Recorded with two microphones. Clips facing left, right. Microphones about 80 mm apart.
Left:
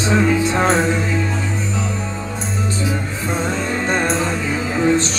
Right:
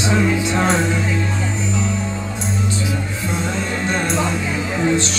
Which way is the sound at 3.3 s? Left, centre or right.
Left.